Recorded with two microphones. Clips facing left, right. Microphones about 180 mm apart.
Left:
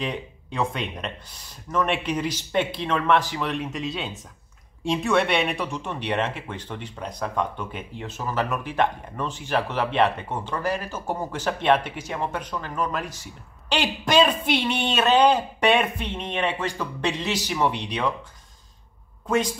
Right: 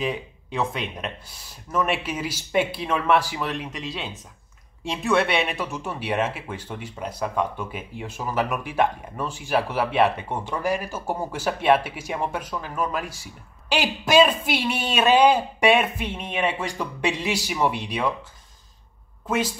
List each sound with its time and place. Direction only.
0.0 s speech: 5° right (ahead or behind)
19.2 s speech: 5° right (ahead or behind)